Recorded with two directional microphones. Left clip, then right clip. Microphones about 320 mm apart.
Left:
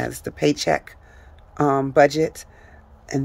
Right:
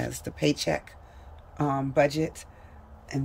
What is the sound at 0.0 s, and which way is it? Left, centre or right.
Speech, centre.